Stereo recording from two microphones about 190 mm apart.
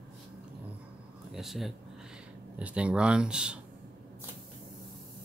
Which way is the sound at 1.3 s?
Centre (ahead or behind).